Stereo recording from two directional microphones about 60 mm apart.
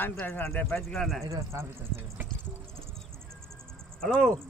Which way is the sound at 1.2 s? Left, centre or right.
Right.